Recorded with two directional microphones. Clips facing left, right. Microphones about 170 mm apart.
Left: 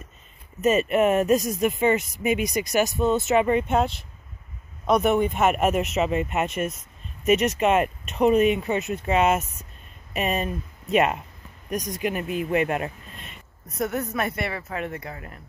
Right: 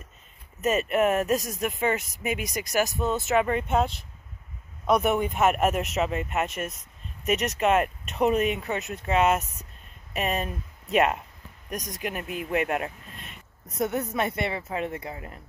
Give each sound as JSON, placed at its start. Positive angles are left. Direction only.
{"t": 0.7, "sound": "speech", "side_deg": 0}
{"t": 1.2, "sound": "speech", "side_deg": 15}
{"t": 1.8, "sound": "speech", "side_deg": 0}
{"t": 4.8, "sound": "speech", "side_deg": -10}
{"t": 13.7, "sound": "speech", "side_deg": -20}